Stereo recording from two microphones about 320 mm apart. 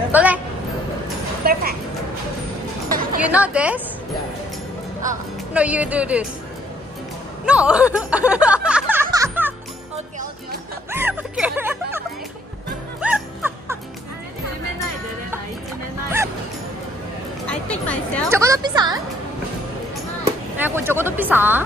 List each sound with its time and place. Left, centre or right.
0.1 s music: centre
1.4 s a sound: right
2.9 s music: right
3.2 s speech: centre
5.5 s speech: centre
7.4 s speech: centre
8.6 s music: centre
10.9 s music: centre
13.0 s music: centre
17.5 s speech: centre
18.3 s a woman's voice: centre
20.6 s speech: centre